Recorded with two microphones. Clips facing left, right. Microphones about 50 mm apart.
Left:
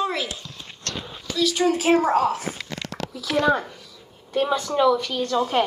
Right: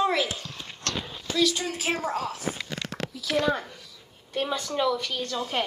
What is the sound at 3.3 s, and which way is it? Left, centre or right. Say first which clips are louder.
Speech: left 5 dB; left.